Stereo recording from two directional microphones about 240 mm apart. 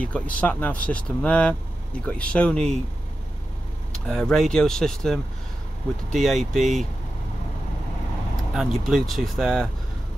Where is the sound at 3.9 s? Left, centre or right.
Centre.